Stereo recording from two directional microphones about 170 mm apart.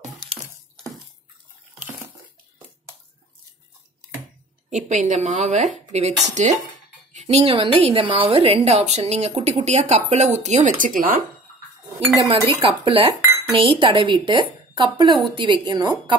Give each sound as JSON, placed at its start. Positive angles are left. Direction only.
{"t": 4.6, "sound": "a woman's voice", "side_deg": -45}
{"t": 10.8, "sound": "a woman's voice", "side_deg": -55}
{"t": 12.2, "sound": "a woman's voice", "side_deg": -30}